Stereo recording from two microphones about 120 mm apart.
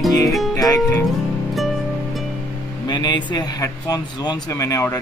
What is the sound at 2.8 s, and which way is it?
Speech, 40° left (ahead or behind).